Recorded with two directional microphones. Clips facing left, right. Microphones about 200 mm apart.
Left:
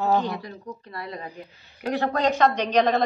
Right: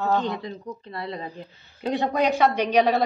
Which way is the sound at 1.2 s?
15° left (ahead or behind).